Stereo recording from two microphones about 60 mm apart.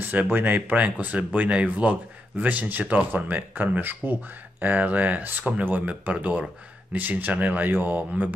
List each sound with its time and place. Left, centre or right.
0.0 s speech: right